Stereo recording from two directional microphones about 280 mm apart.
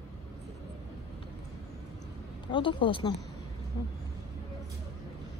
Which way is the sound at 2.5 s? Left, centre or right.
Centre.